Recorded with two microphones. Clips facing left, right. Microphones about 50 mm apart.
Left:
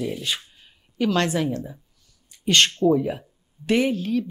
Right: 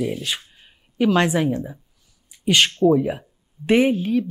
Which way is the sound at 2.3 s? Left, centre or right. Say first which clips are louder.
Right 1 dB; centre.